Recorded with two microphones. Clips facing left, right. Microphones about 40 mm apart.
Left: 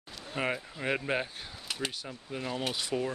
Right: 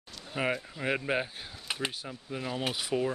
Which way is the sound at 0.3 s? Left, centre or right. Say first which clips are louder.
Right 1 dB; centre.